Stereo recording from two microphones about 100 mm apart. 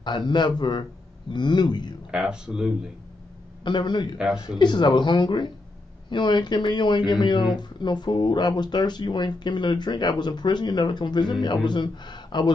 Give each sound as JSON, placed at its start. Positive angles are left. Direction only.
{"t": 0.3, "sound": "speech", "side_deg": 50}
{"t": 2.0, "sound": "speech", "side_deg": -10}
{"t": 3.6, "sound": "speech", "side_deg": 50}
{"t": 4.2, "sound": "speech", "side_deg": -5}
{"t": 4.6, "sound": "speech", "side_deg": 50}